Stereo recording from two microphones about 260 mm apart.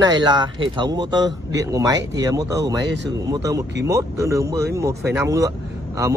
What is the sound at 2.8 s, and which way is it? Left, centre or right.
Speech, right.